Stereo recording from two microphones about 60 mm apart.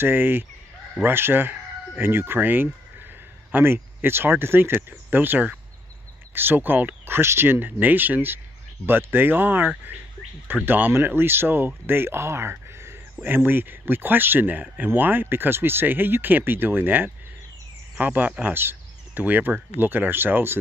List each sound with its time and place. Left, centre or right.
0.0 s speech: right
13.2 s speech: right